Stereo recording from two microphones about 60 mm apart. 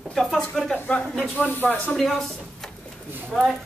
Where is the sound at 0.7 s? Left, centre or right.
Left.